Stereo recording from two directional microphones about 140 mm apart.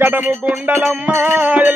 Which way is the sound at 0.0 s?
15° right (ahead or behind).